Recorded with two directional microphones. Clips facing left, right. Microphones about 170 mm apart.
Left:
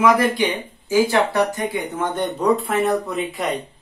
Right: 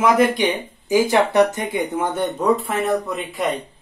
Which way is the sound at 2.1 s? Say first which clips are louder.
Left 1 dB; centre (ahead or behind).